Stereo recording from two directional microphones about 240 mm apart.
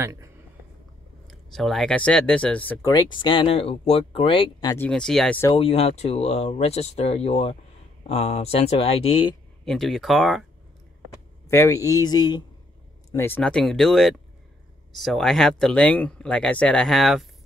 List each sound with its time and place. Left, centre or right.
0.0 s speech: centre
1.2 s speech: centre
4.8 s speech: centre
5.5 s speech: left
9.7 s speech: centre
11.4 s speech: centre